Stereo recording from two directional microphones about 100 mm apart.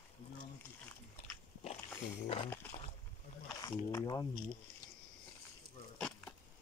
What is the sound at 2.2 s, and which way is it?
Speech, 75° left (ahead or behind).